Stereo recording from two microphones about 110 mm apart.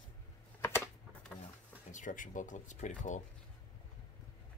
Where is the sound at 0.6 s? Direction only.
25° left (ahead or behind).